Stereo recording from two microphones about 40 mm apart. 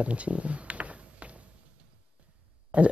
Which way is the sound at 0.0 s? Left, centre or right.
Right.